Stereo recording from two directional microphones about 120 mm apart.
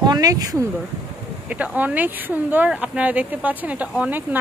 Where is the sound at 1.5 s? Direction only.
10° right (ahead or behind).